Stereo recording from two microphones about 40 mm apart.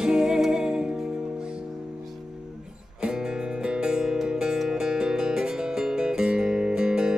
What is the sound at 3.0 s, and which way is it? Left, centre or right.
Music, centre.